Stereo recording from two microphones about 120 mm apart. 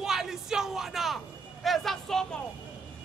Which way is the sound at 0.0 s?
5° right (ahead or behind).